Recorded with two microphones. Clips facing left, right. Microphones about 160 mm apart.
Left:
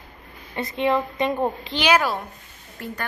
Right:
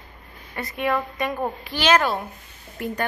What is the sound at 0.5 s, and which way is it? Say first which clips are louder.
A woman's voice: left 3 dB; 25° left (ahead or behind).